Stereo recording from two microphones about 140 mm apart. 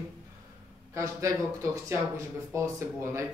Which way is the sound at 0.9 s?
25° right (ahead or behind).